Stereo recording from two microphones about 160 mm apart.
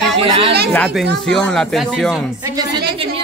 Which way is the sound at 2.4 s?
25° right (ahead or behind).